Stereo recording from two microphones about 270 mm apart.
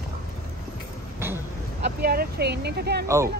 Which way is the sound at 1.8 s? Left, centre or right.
Right.